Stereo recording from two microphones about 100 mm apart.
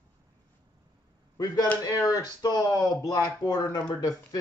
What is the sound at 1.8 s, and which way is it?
Speech, 35° left (ahead or behind).